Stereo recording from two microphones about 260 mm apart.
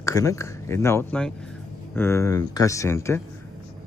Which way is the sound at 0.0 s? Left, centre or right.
Centre.